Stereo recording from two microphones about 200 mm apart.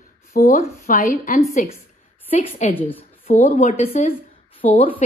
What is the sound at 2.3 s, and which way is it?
A woman's voice, 30° left (ahead or behind).